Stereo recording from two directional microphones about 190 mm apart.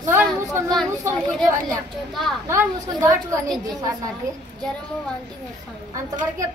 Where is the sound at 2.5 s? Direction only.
15° right (ahead or behind).